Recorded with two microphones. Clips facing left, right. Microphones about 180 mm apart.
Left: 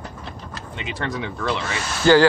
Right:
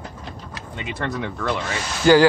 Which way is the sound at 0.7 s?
50° right (ahead or behind).